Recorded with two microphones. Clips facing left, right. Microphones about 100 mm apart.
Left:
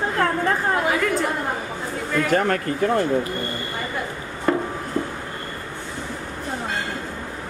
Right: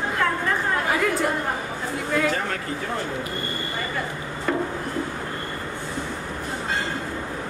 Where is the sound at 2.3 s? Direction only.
50° left (ahead or behind).